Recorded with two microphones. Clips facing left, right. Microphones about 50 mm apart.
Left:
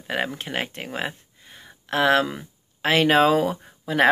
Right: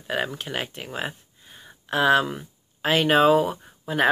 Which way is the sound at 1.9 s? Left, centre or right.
Left.